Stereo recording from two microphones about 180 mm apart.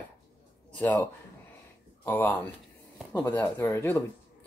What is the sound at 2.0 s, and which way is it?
Speech, 10° left (ahead or behind).